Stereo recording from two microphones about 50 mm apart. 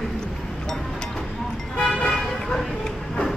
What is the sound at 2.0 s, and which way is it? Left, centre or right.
Vehicle, centre.